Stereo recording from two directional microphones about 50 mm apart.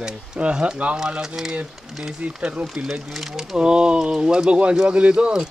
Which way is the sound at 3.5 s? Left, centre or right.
Centre.